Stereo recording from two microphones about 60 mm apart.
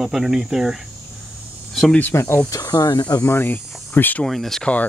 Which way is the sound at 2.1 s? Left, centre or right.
Left.